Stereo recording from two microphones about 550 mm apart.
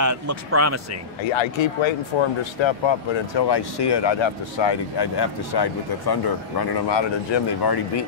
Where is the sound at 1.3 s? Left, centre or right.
Left.